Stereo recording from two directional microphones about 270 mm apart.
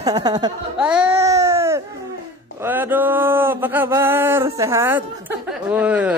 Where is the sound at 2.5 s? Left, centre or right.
Centre.